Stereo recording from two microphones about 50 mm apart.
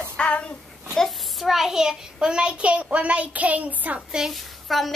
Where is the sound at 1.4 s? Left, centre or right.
Centre; by 4.0 s right.